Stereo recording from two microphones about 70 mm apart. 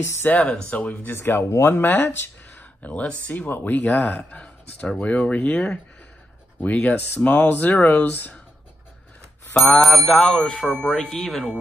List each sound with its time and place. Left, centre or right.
0.0 s speech: left
0.3 s speech: centre
1.1 s speech: left
2.8 s speech: left
9.6 s bicycle bell: centre
10.7 s speech: centre